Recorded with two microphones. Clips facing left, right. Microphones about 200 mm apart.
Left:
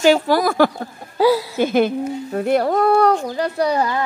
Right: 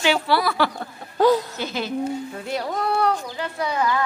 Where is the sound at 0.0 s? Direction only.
45° left (ahead or behind).